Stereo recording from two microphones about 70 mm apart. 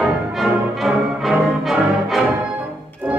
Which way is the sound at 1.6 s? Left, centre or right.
Centre.